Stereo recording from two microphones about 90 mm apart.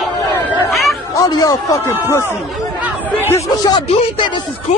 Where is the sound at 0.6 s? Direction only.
Centre (ahead or behind).